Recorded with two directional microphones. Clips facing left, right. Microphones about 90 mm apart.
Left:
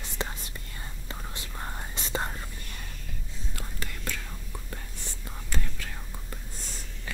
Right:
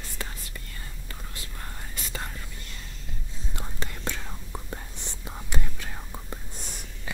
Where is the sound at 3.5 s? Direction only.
25° right (ahead or behind).